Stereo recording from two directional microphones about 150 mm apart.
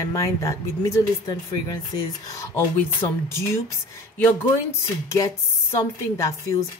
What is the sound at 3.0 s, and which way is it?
Speech, 35° left (ahead or behind).